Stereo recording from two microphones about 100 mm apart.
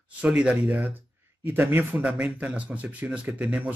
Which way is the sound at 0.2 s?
10° right (ahead or behind).